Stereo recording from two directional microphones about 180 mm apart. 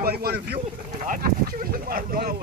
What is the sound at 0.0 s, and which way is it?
Speech, 60° right (ahead or behind).